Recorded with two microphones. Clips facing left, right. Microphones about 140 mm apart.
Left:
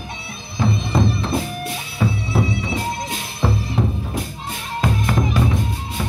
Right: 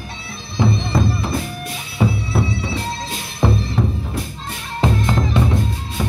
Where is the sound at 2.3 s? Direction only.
20° left (ahead or behind).